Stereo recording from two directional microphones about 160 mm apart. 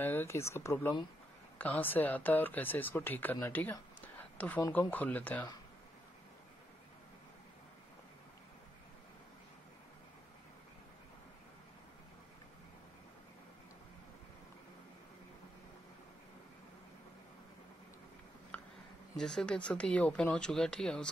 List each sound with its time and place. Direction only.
0.0 s speech: 15° left (ahead or behind)
18.5 s a sound: 10° left (ahead or behind)
19.1 s speech: 5° left (ahead or behind)